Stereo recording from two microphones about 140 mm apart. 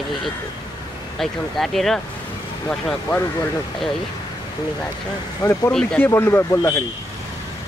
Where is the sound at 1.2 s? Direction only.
Centre (ahead or behind).